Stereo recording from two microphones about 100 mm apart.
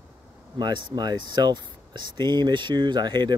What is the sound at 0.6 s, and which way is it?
Speech, 50° right (ahead or behind).